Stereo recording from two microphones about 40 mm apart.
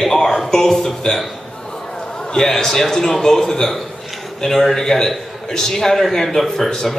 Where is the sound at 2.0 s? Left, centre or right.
Centre.